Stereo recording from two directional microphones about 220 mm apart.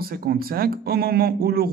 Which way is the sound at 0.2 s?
40° right (ahead or behind).